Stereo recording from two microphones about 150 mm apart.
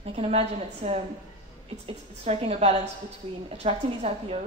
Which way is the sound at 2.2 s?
45° right (ahead or behind).